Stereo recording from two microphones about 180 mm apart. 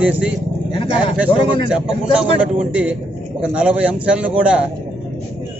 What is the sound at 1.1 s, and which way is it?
A man's voice, 5° right (ahead or behind).